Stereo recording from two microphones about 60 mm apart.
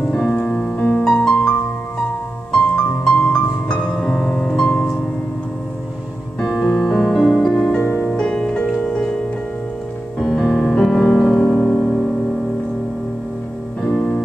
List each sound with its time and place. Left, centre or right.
0.2 s music: centre
0.7 s music: left
3.9 s music: centre
6.6 s music: centre
7.8 s music: left
8.2 s music: centre
10.1 s music: centre
13.9 s music: centre